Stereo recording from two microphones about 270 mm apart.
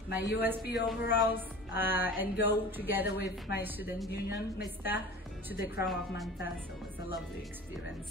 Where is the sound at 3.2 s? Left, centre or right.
Left.